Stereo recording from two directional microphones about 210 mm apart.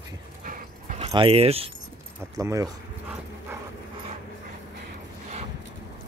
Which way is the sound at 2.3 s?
15° right (ahead or behind).